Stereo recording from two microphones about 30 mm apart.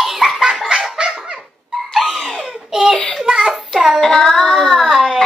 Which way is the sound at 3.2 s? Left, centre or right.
Right.